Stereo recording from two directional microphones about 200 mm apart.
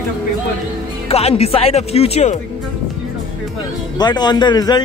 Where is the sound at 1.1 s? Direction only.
30° left (ahead or behind).